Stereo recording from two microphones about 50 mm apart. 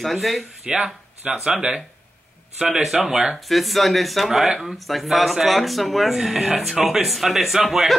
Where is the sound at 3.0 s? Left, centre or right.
Centre.